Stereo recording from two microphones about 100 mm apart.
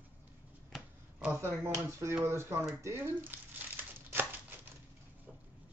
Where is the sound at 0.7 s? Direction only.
10° right (ahead or behind).